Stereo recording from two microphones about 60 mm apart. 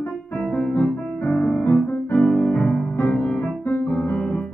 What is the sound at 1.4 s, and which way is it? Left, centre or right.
Music, left.